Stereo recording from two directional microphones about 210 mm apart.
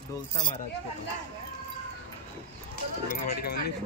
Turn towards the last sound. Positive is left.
turn(degrees=45)  # may be behind; listen again after turning